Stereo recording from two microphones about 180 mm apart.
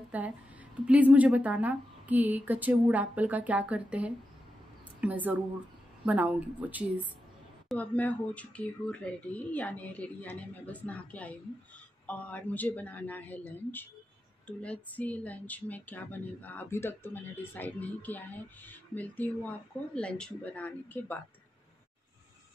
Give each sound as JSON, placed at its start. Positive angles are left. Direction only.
{"t": 0.1, "sound": "a woman's voice", "side_deg": -10}
{"t": 7.6, "sound": "speech", "side_deg": 10}